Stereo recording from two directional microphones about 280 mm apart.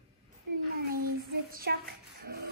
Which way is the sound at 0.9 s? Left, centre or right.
Right.